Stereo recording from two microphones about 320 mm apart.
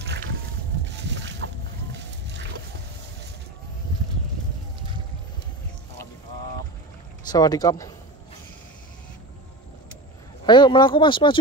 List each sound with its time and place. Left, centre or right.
0.9 s boat: right
2.0 s music: right
7.2 s speech: centre
10.4 s speech: centre